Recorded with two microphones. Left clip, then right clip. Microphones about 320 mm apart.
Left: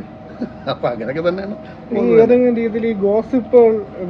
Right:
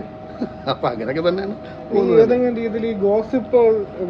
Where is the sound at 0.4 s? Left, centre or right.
Centre.